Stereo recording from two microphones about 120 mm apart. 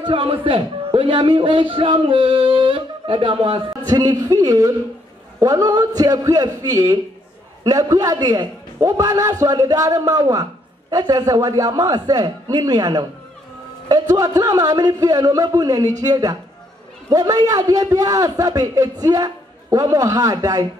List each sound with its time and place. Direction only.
0.0 s speech: 50° right (ahead or behind)
3.9 s a man's voice: 30° right (ahead or behind)